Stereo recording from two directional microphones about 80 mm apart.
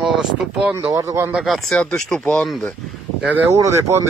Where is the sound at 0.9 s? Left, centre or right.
Right.